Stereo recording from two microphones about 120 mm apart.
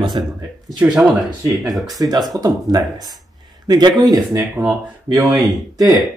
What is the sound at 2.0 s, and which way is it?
Speech, 30° right (ahead or behind).